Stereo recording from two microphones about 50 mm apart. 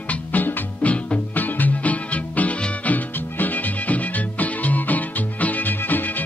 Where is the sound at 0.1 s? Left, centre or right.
Left.